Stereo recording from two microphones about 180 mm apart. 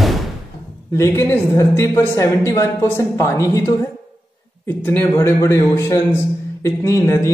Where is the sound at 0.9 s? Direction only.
15° left (ahead or behind).